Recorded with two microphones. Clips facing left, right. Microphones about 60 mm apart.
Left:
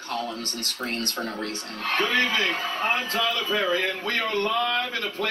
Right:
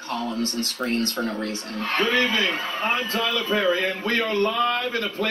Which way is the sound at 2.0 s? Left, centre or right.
Right.